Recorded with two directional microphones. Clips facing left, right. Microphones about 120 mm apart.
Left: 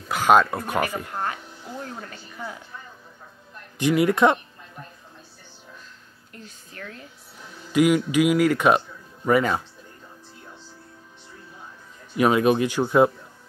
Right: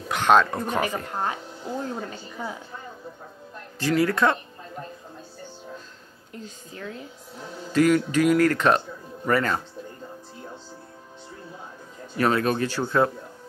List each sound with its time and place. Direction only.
0.1 s speech: 5° left (ahead or behind)
1.2 s speech: 25° right (ahead or behind)
3.8 s speech: 20° left (ahead or behind)
6.3 s speech: 20° right (ahead or behind)
7.7 s speech: 10° left (ahead or behind)
12.2 s speech: 15° left (ahead or behind)